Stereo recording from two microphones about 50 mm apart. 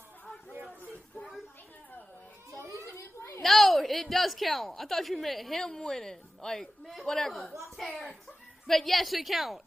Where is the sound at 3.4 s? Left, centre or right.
Centre.